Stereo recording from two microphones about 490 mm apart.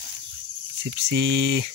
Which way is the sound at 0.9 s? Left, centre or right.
Right.